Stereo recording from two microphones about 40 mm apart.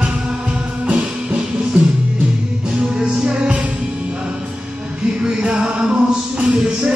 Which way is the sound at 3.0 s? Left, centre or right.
Right.